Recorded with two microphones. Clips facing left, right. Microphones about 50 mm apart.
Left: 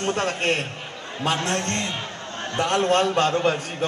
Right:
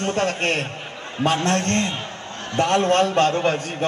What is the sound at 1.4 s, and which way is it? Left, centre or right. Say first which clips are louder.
Speech: right 4 dB; right.